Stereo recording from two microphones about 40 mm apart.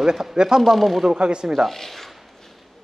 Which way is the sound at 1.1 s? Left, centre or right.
Right.